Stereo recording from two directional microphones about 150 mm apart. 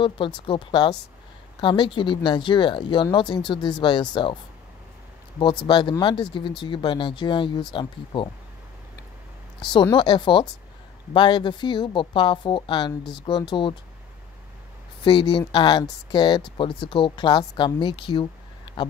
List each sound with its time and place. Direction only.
0.0 s speech: 35° left (ahead or behind)
5.4 s speech: 30° left (ahead or behind)
9.7 s speech: 35° left (ahead or behind)
15.0 s speech: 35° left (ahead or behind)